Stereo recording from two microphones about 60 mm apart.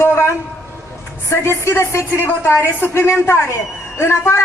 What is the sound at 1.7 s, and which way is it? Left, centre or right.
A man's voice, left.